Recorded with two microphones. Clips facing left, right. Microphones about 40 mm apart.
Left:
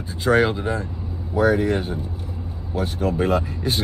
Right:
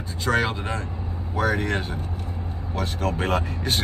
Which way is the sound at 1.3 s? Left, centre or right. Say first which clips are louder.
Left 5 dB; right.